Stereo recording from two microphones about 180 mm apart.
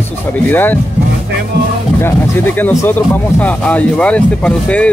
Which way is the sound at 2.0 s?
10° left (ahead or behind).